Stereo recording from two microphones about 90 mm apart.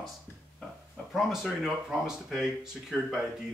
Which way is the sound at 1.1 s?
Centre (ahead or behind).